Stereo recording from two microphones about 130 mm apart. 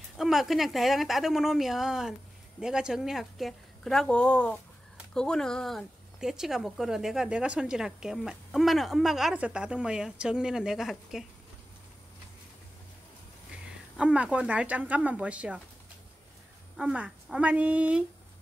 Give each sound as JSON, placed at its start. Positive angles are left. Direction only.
{"t": 0.2, "sound": "speech", "side_deg": 0}
{"t": 13.9, "sound": "a woman's voice", "side_deg": -10}
{"t": 16.7, "sound": "a woman's voice", "side_deg": -10}